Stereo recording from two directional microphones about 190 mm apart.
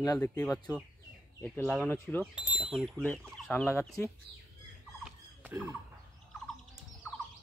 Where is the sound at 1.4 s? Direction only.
5° left (ahead or behind).